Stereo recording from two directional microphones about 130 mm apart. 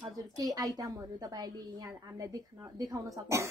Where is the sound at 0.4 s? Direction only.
30° right (ahead or behind).